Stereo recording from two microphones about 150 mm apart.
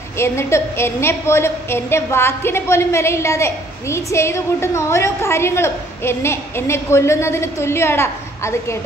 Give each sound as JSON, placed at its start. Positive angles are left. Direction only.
{"t": 0.2, "sound": "a woman's voice", "side_deg": 15}